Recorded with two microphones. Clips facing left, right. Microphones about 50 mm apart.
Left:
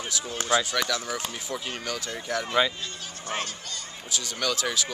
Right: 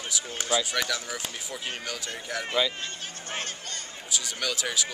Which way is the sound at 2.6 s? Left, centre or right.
Left.